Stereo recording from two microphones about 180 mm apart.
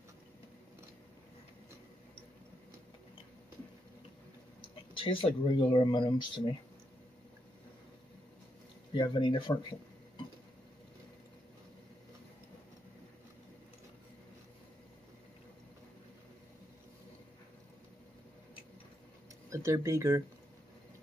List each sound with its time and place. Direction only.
4.9 s speech: 30° left (ahead or behind)
8.9 s speech: 25° left (ahead or behind)
19.5 s speech: 15° right (ahead or behind)